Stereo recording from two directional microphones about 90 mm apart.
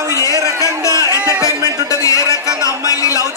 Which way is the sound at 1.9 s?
35° left (ahead or behind).